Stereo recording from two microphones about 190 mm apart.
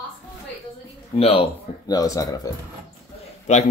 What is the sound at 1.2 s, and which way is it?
Speech, 30° left (ahead or behind).